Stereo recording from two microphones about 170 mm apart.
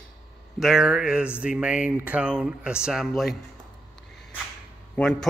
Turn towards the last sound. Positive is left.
turn(degrees=5)  # may be behind; listen again after turning